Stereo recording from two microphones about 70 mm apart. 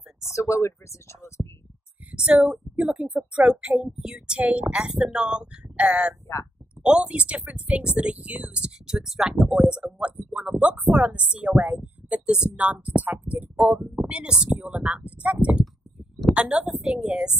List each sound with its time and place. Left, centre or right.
0.2 s speech: left
2.0 s a woman's voice: centre
13.6 s a woman's voice: centre
16.3 s a woman's voice: centre